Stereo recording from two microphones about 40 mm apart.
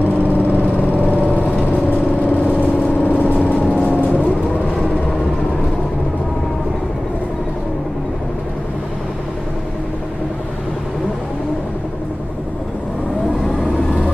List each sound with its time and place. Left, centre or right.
0.4 s vehicle: left